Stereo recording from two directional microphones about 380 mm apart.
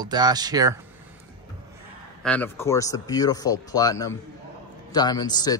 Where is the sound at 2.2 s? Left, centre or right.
Centre.